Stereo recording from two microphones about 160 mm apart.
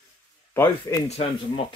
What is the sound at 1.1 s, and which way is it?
Speech, 35° left (ahead or behind).